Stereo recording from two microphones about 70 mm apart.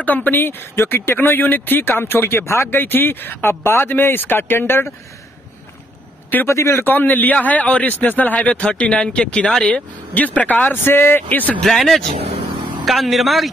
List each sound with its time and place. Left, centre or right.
0.0 s speech: left
6.4 s speech: left
6.9 s a man's voice: left
11.6 s a man's voice: centre